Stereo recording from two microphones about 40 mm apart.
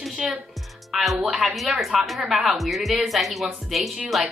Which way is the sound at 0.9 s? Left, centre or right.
Centre.